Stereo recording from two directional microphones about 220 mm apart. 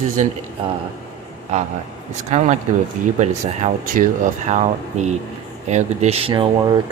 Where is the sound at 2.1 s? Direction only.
30° right (ahead or behind).